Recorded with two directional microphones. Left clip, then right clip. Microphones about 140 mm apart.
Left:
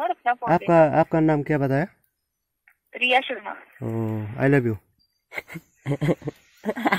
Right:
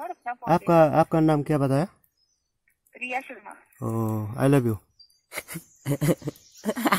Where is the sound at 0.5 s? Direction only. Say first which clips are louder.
Left 1 dB; centre (ahead or behind).